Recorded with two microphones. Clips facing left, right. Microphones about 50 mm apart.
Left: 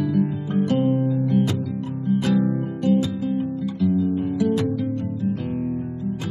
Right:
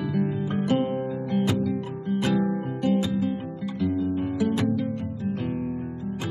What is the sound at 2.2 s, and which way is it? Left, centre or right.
Music, centre.